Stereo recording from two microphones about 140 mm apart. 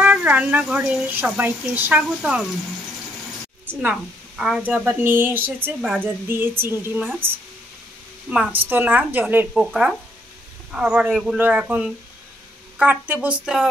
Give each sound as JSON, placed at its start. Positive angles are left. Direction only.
{"t": 0.0, "sound": "a woman's voice", "side_deg": -10}
{"t": 3.6, "sound": "a woman's voice", "side_deg": -5}
{"t": 8.3, "sound": "a woman's voice", "side_deg": -5}